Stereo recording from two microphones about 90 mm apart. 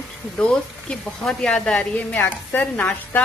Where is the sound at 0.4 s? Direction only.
10° left (ahead or behind).